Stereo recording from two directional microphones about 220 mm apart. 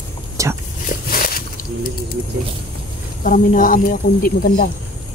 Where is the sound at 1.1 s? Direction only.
40° left (ahead or behind).